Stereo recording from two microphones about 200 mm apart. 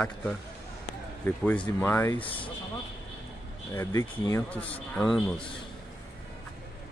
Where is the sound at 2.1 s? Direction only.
25° left (ahead or behind).